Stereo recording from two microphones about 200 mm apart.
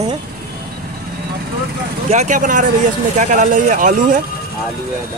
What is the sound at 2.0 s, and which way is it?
Speech, 35° right (ahead or behind).